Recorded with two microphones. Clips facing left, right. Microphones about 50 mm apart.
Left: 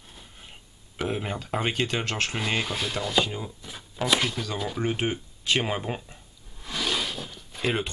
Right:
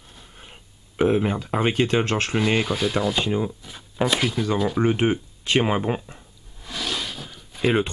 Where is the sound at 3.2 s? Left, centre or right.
Right.